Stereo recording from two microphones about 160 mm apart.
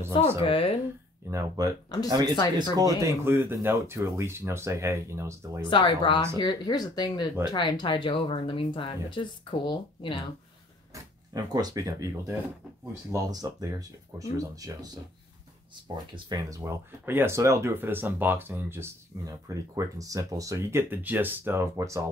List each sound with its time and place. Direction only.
0.4 s speech: 35° left (ahead or behind)
1.2 s speech: 15° right (ahead or behind)
2.3 s speech: 25° left (ahead or behind)
2.7 s speech: 20° right (ahead or behind)
5.6 s speech: 30° left (ahead or behind)
10.9 s speech: 20° right (ahead or behind)
13.1 s speech: 25° right (ahead or behind)
16.3 s speech: 25° right (ahead or behind)